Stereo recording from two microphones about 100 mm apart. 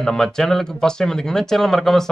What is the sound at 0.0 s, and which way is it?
Speech, 5° left (ahead or behind).